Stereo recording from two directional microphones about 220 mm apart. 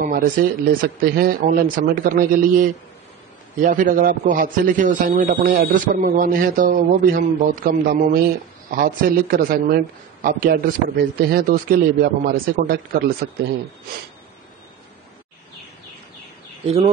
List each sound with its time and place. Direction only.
0.0 s a man's voice: 40° right (ahead or behind)